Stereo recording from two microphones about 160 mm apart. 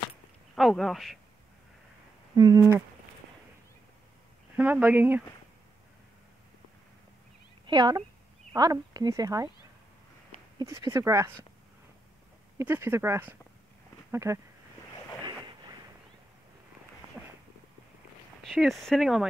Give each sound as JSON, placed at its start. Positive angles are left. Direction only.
{"t": 0.6, "sound": "speech", "side_deg": 0}
{"t": 2.3, "sound": "speech", "side_deg": -20}
{"t": 4.6, "sound": "speech", "side_deg": -10}
{"t": 7.6, "sound": "speech", "side_deg": -25}
{"t": 10.6, "sound": "speech", "side_deg": -20}
{"t": 12.5, "sound": "speech", "side_deg": -15}
{"t": 18.4, "sound": "speech", "side_deg": 0}